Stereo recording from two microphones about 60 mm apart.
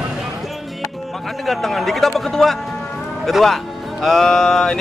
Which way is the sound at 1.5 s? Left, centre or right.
Centre.